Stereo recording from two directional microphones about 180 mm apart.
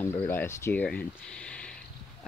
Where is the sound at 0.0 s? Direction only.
10° left (ahead or behind).